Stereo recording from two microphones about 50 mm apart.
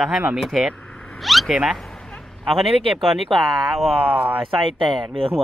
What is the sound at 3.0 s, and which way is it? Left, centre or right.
Speech, centre.